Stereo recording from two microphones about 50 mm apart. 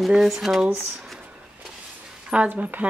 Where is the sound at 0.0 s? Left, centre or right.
Centre.